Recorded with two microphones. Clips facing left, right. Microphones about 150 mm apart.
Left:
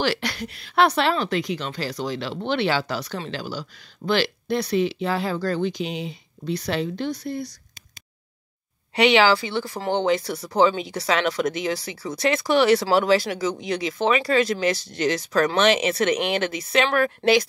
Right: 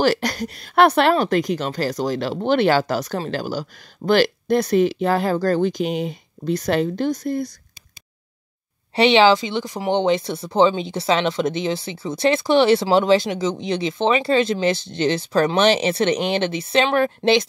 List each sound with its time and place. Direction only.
0.0 s a woman's voice: 45° right (ahead or behind)
8.9 s speech: 25° right (ahead or behind)